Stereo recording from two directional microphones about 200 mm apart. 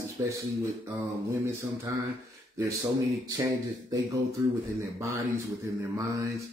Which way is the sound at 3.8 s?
15° right (ahead or behind).